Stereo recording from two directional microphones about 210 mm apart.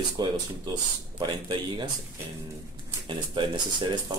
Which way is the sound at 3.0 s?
20° right (ahead or behind).